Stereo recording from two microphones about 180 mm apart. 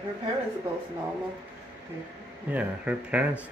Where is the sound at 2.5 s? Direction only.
10° right (ahead or behind).